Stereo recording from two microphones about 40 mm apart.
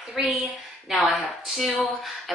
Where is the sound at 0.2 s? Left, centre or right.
Centre.